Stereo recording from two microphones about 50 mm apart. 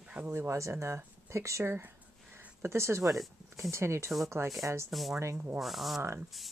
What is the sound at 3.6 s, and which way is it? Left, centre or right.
Speech, right.